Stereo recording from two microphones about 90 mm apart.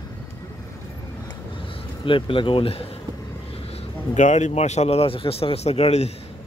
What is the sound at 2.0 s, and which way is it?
Speech, 70° left (ahead or behind).